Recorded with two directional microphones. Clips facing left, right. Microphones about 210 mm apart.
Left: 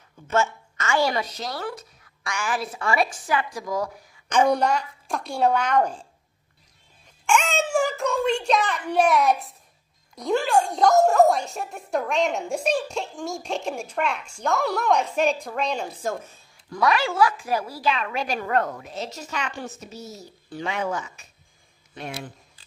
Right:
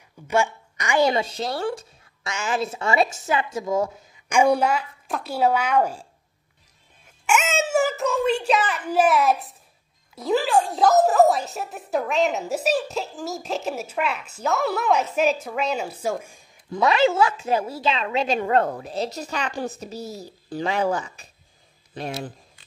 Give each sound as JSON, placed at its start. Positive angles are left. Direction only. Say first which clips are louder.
{"t": 0.3, "sound": "a woman's voice", "louder": "right 1 dB", "side_deg": -15}
{"t": 4.3, "sound": "a woman's voice", "louder": "right 1 dB", "side_deg": -10}
{"t": 7.2, "sound": "a sound", "louder": "even", "side_deg": -5}
{"t": 10.1, "sound": "a woman's voice", "louder": "right 1 dB", "side_deg": 0}
{"t": 16.7, "sound": "a woman's voice", "louder": "right 4 dB", "side_deg": -25}